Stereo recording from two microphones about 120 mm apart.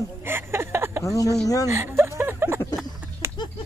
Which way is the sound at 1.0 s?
30° left (ahead or behind).